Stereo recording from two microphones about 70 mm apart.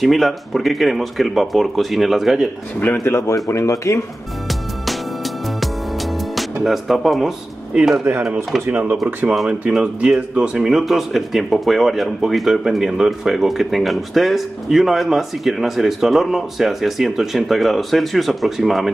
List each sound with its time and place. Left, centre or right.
0.0 s speech: centre
3.0 s speech: left
5.6 s music: centre
7.7 s speech: centre
8.6 s speech: right
9.2 s speech: centre